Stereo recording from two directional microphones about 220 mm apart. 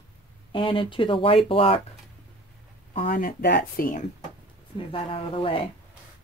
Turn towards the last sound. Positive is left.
turn(degrees=25)  # may be behind; listen again after turning